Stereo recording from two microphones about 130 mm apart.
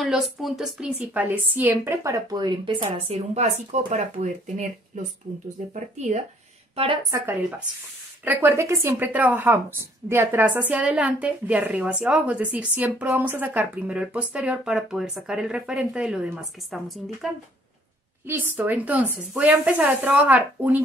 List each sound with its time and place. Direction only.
0.0 s speech: centre (ahead or behind); by 3.2 s 40° right (ahead or behind)
3.9 s speech: 65° right (ahead or behind)
4.9 s speech: 75° right (ahead or behind)
5.7 s speech: 60° right (ahead or behind)
6.7 s speech: 45° right (ahead or behind)
7.1 s speech: 25° right (ahead or behind); by 17.3 s 5° right (ahead or behind)
18.2 s speech: 15° right (ahead or behind)